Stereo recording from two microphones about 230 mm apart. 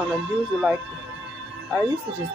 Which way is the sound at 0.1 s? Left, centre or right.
Centre.